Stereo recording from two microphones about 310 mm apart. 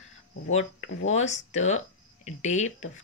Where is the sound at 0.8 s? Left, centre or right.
Left.